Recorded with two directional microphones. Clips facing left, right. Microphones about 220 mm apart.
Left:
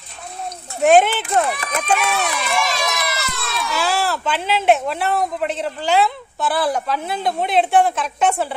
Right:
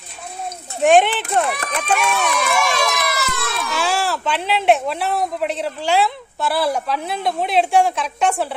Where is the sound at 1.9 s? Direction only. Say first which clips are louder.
Right 2 dB; 50° right (ahead or behind).